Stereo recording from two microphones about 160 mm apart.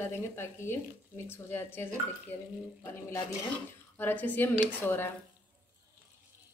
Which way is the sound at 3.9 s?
10° left (ahead or behind).